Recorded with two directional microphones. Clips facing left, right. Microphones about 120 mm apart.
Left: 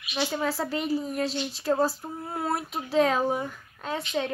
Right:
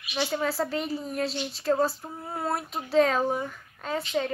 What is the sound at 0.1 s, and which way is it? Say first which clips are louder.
A woman's voice: even; centre (ahead or behind).